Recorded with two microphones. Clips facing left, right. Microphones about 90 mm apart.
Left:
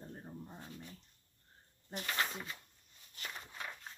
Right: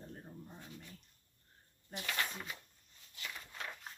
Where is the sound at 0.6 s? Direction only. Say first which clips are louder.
Left 2 dB; 30° left (ahead or behind).